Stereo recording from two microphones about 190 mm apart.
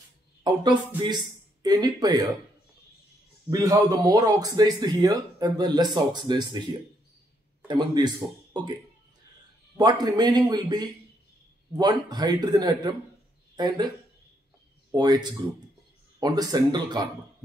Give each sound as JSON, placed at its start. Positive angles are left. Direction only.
{"t": 0.4, "sound": "speech", "side_deg": -20}
{"t": 3.4, "sound": "speech", "side_deg": -20}
{"t": 7.6, "sound": "speech", "side_deg": -25}
{"t": 9.8, "sound": "speech", "side_deg": -20}
{"t": 14.9, "sound": "speech", "side_deg": -20}